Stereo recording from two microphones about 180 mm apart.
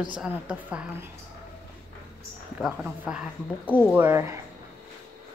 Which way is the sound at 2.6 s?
5° right (ahead or behind).